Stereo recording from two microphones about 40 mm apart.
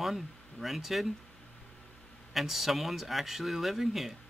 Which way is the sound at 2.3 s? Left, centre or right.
Centre.